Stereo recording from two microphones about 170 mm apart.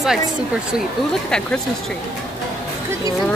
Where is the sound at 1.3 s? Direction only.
5° left (ahead or behind).